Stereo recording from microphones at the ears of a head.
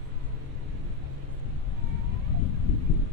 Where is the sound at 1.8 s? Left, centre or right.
Left.